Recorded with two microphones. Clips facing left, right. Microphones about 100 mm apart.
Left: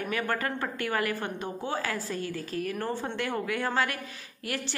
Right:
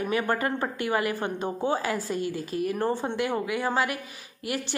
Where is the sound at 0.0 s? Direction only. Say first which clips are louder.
Right 4 dB; 20° right (ahead or behind).